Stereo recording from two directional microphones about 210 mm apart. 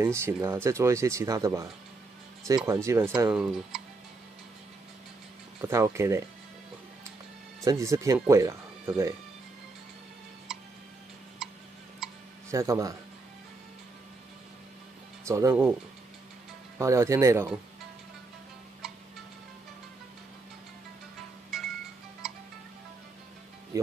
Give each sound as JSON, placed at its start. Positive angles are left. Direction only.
{"t": 0.0, "sound": "speech", "side_deg": -10}
{"t": 5.6, "sound": "speech", "side_deg": -15}
{"t": 7.6, "sound": "speech", "side_deg": -15}
{"t": 10.5, "sound": "tick-tock", "side_deg": 0}
{"t": 11.4, "sound": "a sound", "side_deg": 0}
{"t": 12.4, "sound": "speech", "side_deg": -15}
{"t": 15.2, "sound": "speech", "side_deg": -15}
{"t": 16.7, "sound": "speech", "side_deg": -15}
{"t": 21.5, "sound": "music", "side_deg": 0}
{"t": 23.7, "sound": "music", "side_deg": -15}